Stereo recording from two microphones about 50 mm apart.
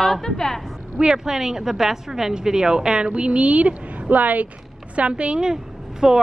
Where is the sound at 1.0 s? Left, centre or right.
Centre.